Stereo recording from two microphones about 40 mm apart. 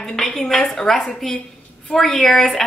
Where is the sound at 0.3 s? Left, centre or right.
Centre.